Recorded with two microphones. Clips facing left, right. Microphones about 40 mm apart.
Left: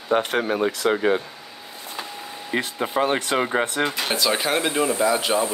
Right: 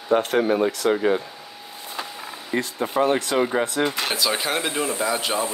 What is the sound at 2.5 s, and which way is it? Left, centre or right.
Speech, left.